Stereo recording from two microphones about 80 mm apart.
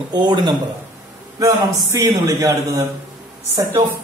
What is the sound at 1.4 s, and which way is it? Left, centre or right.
Speech, right.